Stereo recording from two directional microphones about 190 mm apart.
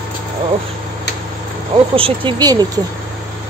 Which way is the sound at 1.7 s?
30° right (ahead or behind).